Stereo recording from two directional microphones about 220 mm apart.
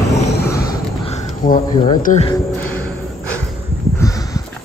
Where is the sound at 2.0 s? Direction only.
35° left (ahead or behind).